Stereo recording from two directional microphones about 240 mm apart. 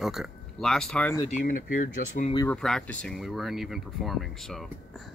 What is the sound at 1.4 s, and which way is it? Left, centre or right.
Speech, left.